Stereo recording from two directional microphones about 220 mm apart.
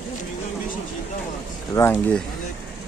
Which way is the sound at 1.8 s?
15° left (ahead or behind).